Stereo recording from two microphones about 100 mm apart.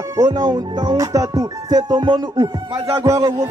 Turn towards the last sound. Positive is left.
turn(degrees=-35)  # may be behind; listen again after turning